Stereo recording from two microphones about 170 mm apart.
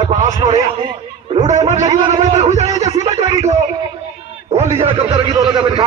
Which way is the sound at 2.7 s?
25° right (ahead or behind).